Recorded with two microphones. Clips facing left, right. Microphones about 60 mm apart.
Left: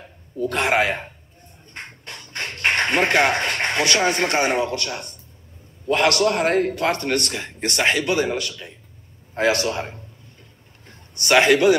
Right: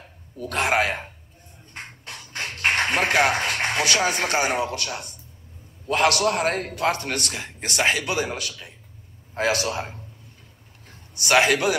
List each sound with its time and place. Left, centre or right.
0.5 s speech: centre
1.7 s a sound: centre
5.9 s speech: centre
6.4 s a man's voice: centre
6.7 s speech: centre
10.9 s a sound: centre